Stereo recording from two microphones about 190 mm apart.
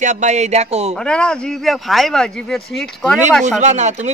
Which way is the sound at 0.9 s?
5° left (ahead or behind).